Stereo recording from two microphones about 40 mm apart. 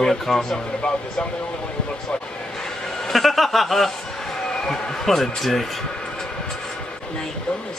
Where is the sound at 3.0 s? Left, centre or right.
Centre.